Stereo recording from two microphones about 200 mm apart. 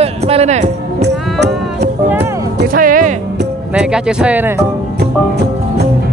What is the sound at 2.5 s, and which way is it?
Speech, 45° right (ahead or behind).